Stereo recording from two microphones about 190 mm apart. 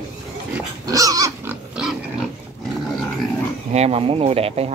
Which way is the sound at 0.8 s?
20° right (ahead or behind).